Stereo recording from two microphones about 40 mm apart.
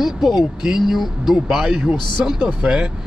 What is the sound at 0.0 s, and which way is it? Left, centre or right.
Speech, centre.